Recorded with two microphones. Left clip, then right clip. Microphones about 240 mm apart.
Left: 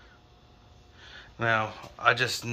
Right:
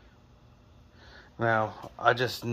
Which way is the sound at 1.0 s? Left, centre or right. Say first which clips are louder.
Even; right.